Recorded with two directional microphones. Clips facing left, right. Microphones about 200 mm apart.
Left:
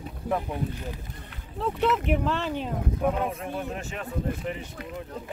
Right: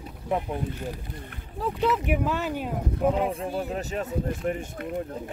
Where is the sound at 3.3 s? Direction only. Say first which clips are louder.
Right 3 dB; 30° right (ahead or behind); by 5.3 s 50° right (ahead or behind).